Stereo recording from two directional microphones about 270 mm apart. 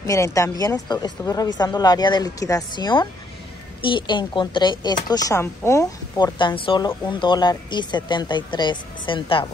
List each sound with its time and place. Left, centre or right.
0.0 s speech: centre